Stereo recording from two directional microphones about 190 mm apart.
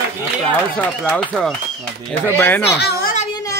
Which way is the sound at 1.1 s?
5° left (ahead or behind).